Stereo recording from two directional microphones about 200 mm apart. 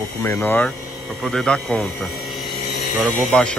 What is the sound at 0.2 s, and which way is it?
A man's voice, 10° left (ahead or behind).